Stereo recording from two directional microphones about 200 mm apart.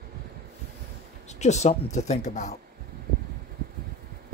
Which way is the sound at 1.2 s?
35° left (ahead or behind).